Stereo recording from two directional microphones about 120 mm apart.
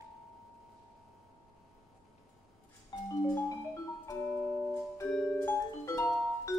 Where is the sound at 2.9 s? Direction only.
35° left (ahead or behind).